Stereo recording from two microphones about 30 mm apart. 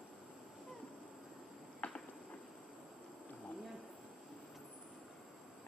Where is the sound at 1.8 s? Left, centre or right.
Left.